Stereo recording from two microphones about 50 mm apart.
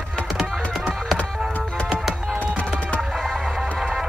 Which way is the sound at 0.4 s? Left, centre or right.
Centre.